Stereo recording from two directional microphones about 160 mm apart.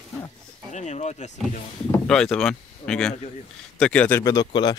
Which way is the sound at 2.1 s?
Centre (ahead or behind).